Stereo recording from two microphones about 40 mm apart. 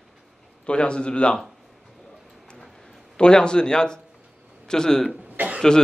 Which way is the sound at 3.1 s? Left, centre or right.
Left.